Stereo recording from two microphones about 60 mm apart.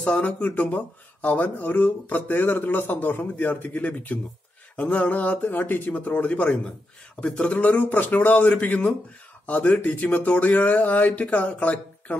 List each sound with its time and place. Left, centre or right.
0.0 s speech: left